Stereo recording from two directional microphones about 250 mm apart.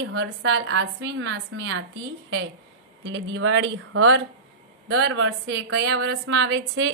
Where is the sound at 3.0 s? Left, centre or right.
Right.